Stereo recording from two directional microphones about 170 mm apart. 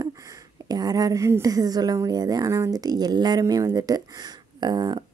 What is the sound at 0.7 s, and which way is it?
Speech, 20° right (ahead or behind).